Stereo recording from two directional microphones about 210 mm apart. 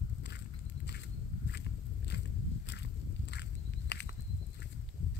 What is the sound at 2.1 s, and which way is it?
Biting, 55° left (ahead or behind).